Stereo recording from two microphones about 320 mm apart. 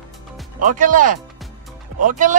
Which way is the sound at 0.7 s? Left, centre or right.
Right.